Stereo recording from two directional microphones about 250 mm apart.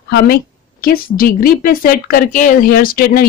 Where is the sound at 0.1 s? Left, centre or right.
Left.